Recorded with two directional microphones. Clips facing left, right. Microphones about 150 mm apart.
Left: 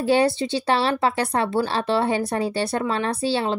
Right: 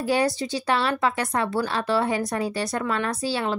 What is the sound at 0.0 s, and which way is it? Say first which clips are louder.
A woman's voice: left 4 dB; 30° left (ahead or behind).